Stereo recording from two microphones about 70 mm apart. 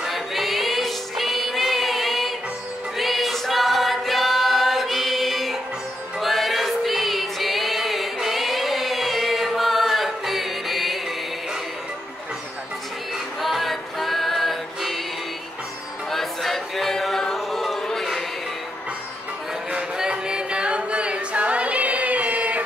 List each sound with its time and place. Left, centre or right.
0.0 s music: centre
3.0 s choir: centre
13.4 s music: centre
16.1 s music: centre
19.7 s a capella: centre